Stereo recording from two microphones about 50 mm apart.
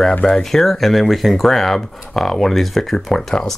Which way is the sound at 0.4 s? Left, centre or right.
Centre.